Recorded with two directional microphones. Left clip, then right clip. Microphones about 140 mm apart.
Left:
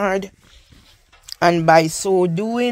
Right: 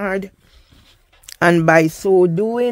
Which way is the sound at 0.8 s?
80° right.